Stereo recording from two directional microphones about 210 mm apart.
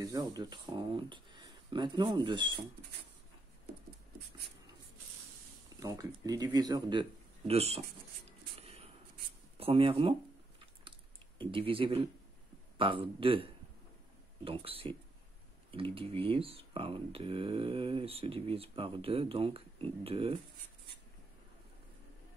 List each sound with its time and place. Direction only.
0.0 s speech: 15° right (ahead or behind)
5.8 s speech: 15° right (ahead or behind)
8.5 s a sound: 30° right (ahead or behind)
9.6 s speech: 25° right (ahead or behind)
10.6 s typing: 25° right (ahead or behind)
12.7 s speech: 25° right (ahead or behind)